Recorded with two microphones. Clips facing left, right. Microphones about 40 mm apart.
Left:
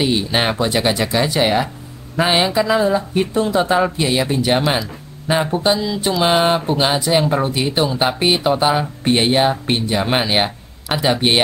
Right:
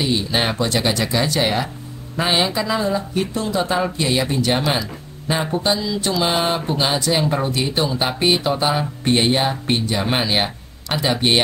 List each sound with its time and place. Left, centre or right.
0.0 s speech: centre
3.3 s speech: left
3.7 s speech: centre